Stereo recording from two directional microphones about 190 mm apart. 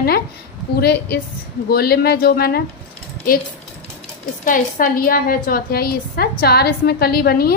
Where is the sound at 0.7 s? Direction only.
55° left (ahead or behind).